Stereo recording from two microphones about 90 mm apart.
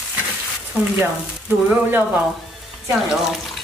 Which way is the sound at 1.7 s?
20° right (ahead or behind).